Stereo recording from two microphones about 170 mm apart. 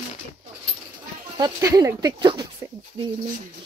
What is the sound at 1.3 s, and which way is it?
Child singing, 20° right (ahead or behind).